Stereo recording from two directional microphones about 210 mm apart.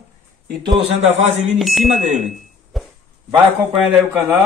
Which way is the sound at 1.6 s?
Centre (ahead or behind).